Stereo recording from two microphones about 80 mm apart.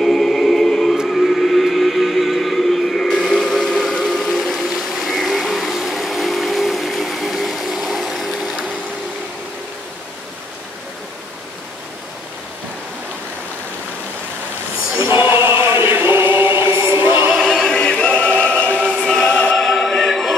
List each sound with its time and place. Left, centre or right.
0.0 s choir: centre
0.9 s music: centre
4.0 s vehicle: centre
15.2 s chant: right
16.7 s music: right
17.4 s choir: centre
19.5 s opera: centre